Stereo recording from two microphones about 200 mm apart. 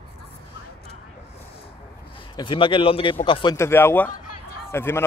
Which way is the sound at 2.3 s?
25° left (ahead or behind).